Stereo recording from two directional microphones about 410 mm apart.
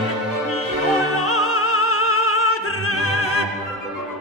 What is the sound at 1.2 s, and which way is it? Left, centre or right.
Opera, left.